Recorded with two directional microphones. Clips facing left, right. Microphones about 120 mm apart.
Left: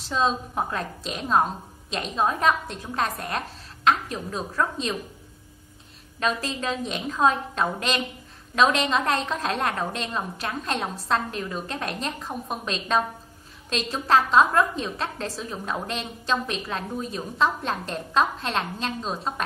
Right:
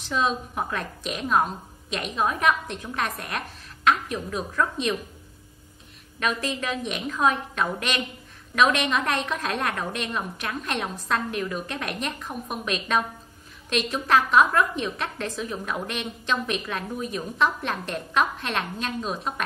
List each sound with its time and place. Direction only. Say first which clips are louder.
0.1 s a woman's voice: left 1 dB; 30° left (ahead or behind)
6.1 s a woman's voice: even; 30° left (ahead or behind)